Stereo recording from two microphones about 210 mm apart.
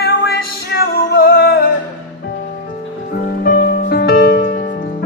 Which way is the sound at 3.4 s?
45° left (ahead or behind).